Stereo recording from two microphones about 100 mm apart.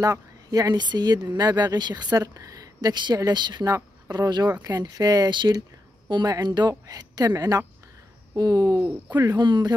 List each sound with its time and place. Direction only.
0.0 s speech: 40° right (ahead or behind)
3.6 s speech: 35° right (ahead or behind)
9.4 s speech: 45° right (ahead or behind)